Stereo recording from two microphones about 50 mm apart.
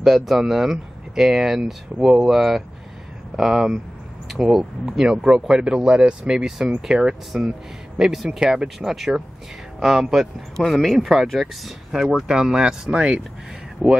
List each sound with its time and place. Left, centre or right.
0.0 s speech: centre
4.3 s a sound: centre
4.9 s speech: centre
8.7 s speech: centre
11.9 s speech: centre
13.8 s speech: right